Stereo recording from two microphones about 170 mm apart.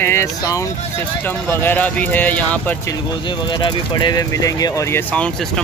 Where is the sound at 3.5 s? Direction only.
25° left (ahead or behind).